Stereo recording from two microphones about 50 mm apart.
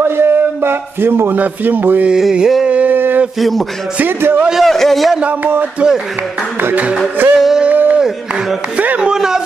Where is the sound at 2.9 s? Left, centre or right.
Right.